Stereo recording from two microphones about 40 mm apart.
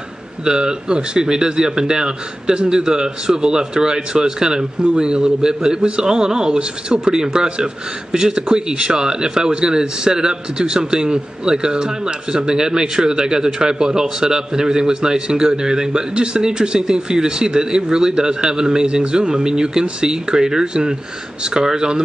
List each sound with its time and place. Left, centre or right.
0.5 s speech: right